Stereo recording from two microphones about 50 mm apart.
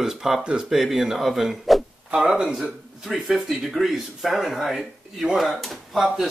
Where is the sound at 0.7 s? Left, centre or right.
Centre.